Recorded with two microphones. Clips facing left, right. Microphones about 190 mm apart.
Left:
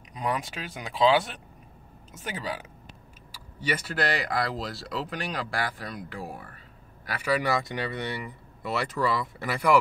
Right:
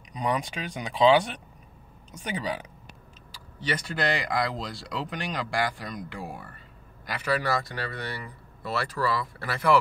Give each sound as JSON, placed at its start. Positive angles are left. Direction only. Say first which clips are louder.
{"t": 0.1, "sound": "speech", "louder": "right 2 dB", "side_deg": 5}
{"t": 7.1, "sound": "a man's voice", "louder": "left 1 dB", "side_deg": 10}